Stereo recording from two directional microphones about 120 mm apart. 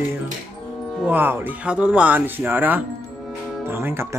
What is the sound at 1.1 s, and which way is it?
Speech, 15° right (ahead or behind).